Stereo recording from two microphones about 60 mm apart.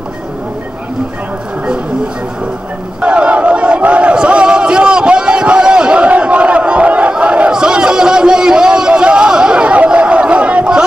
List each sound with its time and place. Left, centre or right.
3.0 s battle cry: right